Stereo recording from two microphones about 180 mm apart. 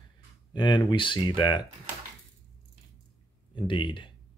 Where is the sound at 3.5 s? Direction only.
25° left (ahead or behind).